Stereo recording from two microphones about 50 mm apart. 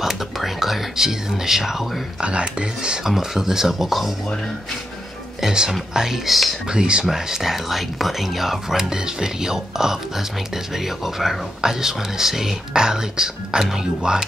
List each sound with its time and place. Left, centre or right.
0.0 s speech: centre
2.1 s speech: right; by 4.1 s centre
5.4 s speech: centre
6.7 s speech: centre